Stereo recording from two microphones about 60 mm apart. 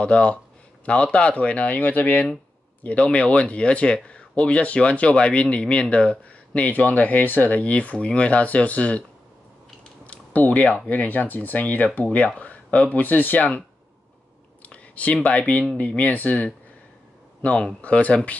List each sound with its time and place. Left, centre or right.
0.0 s speech: centre
10.0 s typing: left
10.9 s speech: left
14.6 s a sound: left
15.2 s speech: left